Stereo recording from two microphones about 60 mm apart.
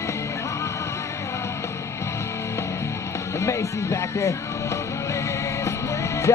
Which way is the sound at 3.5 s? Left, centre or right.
Left.